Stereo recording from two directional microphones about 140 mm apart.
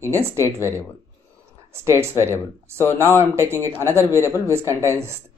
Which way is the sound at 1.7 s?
20° right (ahead or behind).